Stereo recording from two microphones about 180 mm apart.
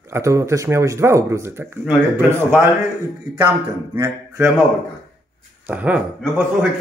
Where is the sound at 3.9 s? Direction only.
10° right (ahead or behind).